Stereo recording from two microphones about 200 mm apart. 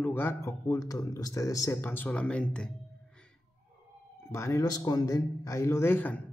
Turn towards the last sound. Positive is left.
turn(degrees=10)  # may be behind; listen again after turning